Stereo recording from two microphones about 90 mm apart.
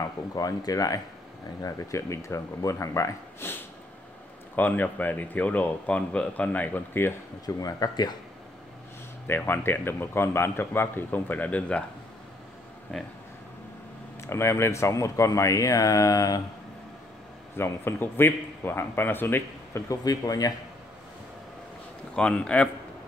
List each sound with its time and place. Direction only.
0.4 s speech: 45° left (ahead or behind); by 7.2 s 25° left (ahead or behind)
7.4 s speech: 45° left (ahead or behind)
9.3 s speech: 25° left (ahead or behind)
12.9 s speech: 5° left (ahead or behind)
14.2 s speech: 30° left (ahead or behind)
17.6 s speech: 25° left (ahead or behind)
19.9 s speech: 40° left (ahead or behind)
22.1 s a man's voice: 10° left (ahead or behind)